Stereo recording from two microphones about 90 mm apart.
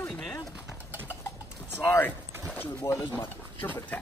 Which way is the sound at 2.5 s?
20° left (ahead or behind).